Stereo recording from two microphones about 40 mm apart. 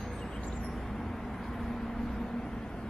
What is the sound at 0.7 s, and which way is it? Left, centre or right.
Vehicle, centre.